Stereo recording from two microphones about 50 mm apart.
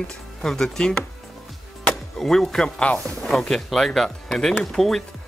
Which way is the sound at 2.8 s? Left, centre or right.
Left.